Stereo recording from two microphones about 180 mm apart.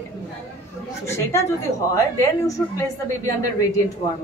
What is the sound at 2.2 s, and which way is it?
Speech, 20° left (ahead or behind).